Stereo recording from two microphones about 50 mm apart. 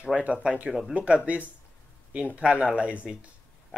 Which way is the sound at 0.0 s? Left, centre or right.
Right.